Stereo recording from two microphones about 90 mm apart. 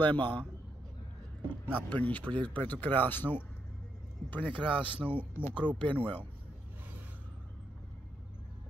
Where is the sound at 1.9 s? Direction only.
15° left (ahead or behind).